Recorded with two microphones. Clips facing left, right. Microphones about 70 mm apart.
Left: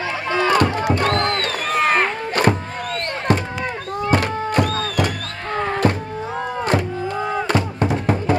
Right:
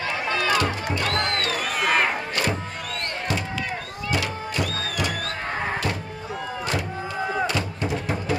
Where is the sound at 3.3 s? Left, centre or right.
Left.